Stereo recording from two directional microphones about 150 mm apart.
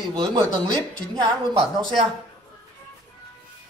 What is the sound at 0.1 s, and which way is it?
Speech, 25° right (ahead or behind).